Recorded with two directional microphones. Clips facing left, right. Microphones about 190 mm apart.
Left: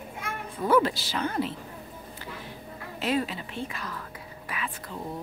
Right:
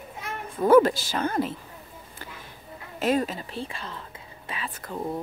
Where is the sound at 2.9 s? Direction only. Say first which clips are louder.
Right 4 dB; 45° right (ahead or behind); by 4.7 s 25° right (ahead or behind).